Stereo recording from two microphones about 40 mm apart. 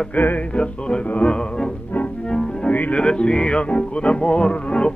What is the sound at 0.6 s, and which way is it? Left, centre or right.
Music, left.